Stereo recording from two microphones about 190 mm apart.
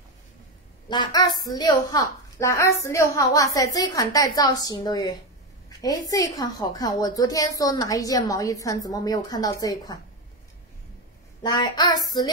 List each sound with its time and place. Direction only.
0.8 s a woman's voice: 25° left (ahead or behind)
11.4 s a woman's voice: 25° left (ahead or behind)